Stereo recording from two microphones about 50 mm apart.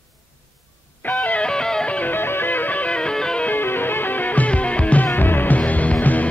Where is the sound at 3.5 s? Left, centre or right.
Left.